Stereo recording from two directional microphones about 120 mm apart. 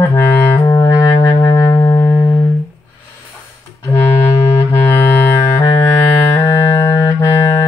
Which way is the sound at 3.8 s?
25° left (ahead or behind).